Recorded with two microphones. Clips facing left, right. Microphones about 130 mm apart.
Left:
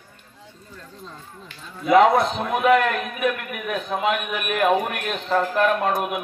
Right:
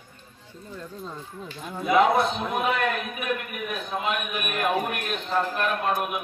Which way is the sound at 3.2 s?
90° left.